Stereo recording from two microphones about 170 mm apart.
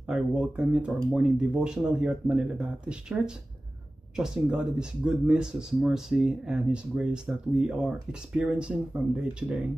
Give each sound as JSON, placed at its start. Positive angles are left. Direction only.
{"t": 0.0, "sound": "speech", "side_deg": -5}